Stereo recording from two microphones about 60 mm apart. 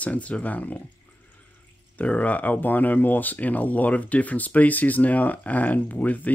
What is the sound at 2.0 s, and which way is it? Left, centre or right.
Speech, left.